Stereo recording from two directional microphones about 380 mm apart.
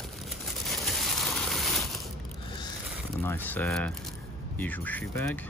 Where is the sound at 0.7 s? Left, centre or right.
Centre.